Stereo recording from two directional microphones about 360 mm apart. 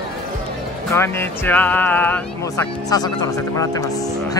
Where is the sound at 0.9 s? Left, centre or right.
Centre.